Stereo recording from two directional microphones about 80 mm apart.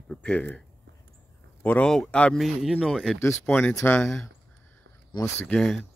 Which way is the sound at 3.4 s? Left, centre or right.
Left.